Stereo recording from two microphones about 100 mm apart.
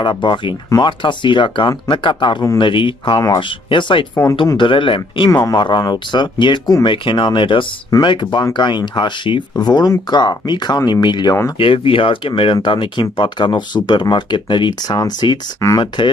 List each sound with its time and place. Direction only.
0.0 s speech: 50° left (ahead or behind)
0.7 s speech: 40° left (ahead or behind)
1.0 s speech: 55° left (ahead or behind)
5.3 s speech: 35° left (ahead or behind)
5.6 s speech: 45° left (ahead or behind)
11.5 s speech: 65° left (ahead or behind); by 15.8 s 35° left (ahead or behind)
16.0 s speech: 50° left (ahead or behind)